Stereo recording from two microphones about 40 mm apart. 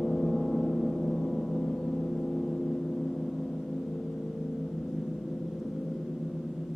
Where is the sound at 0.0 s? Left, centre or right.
Centre.